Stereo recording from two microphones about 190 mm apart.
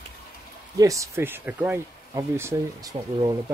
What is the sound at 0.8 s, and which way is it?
Speech, 15° right (ahead or behind).